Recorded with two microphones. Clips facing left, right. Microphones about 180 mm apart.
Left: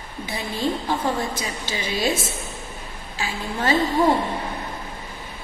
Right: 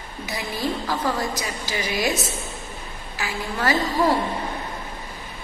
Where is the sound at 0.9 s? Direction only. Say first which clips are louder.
Left 1 dB; 25° left (ahead or behind).